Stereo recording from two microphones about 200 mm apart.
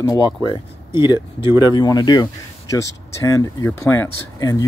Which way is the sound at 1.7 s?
20° left (ahead or behind).